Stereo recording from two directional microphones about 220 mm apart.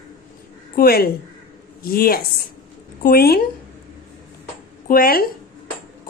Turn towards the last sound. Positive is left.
turn(degrees=40)  # may be behind; listen again after turning